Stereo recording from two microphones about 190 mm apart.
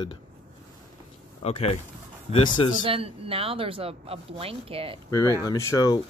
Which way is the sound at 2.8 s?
30° right (ahead or behind).